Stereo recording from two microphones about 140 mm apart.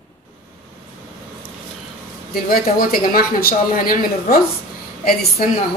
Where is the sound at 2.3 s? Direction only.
90° left.